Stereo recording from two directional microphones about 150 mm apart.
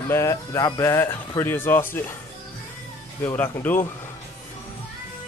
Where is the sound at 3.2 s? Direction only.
20° left (ahead or behind).